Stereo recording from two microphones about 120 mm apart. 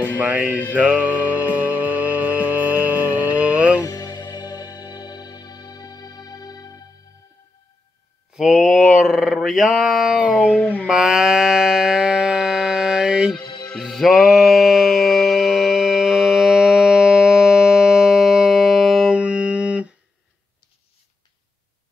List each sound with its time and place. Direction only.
0.2 s music: 15° right (ahead or behind)
3.8 s music: 30° left (ahead or behind)
8.4 s a sound: 5° right (ahead or behind)
10.3 s a sound: 10° left (ahead or behind)
10.9 s music: 5° right (ahead or behind)
13.4 s music: 40° left (ahead or behind)
13.7 s music: centre (ahead or behind)